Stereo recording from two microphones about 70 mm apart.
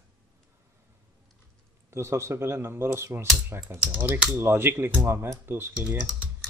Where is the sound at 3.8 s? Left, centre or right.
Right.